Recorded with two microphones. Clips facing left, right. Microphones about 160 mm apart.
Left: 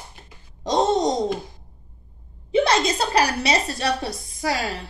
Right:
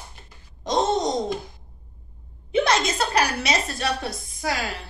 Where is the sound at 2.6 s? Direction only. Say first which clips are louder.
Left 2 dB; 35° left (ahead or behind).